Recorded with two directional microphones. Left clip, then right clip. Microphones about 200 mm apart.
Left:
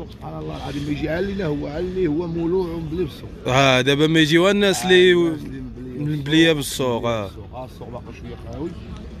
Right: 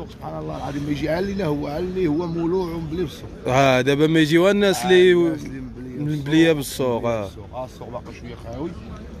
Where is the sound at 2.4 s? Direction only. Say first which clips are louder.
Left 1 dB; 20° right (ahead or behind).